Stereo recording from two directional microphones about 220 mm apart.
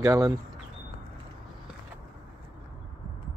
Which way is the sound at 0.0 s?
15° right (ahead or behind).